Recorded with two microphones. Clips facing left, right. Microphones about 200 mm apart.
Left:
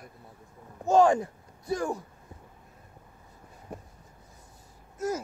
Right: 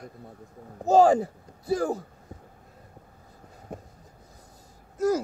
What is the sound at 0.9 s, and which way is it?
Speech, 35° right (ahead or behind).